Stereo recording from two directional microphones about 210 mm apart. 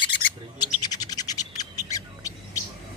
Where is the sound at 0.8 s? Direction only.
20° left (ahead or behind).